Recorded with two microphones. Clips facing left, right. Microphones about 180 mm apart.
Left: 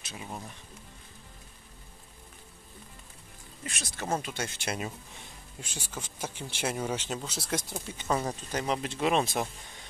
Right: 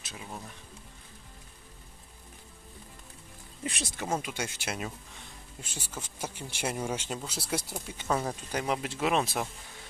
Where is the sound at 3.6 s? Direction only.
30° right (ahead or behind).